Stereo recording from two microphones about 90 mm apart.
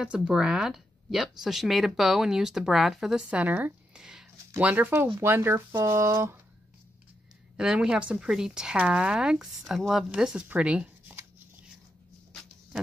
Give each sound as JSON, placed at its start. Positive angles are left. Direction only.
{"t": 0.0, "sound": "speech", "side_deg": -10}
{"t": 4.0, "sound": "a sound", "side_deg": -5}
{"t": 4.6, "sound": "speech", "side_deg": -20}
{"t": 7.5, "sound": "a woman's voice", "side_deg": -10}